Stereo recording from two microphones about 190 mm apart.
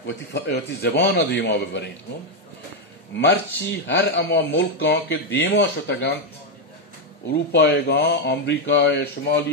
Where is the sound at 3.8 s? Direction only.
60° left (ahead or behind).